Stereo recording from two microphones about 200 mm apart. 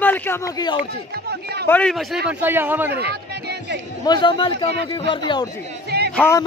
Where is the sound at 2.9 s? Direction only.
55° right (ahead or behind).